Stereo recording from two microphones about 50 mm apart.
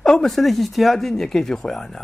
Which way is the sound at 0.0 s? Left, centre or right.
Centre.